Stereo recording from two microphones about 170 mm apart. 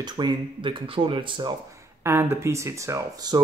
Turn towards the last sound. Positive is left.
turn(degrees=-25)  # may be behind; listen again after turning